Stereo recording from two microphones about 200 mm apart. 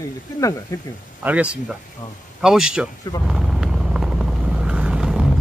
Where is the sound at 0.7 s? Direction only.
15° left (ahead or behind).